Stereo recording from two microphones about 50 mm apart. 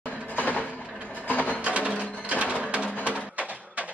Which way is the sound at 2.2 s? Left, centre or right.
Right.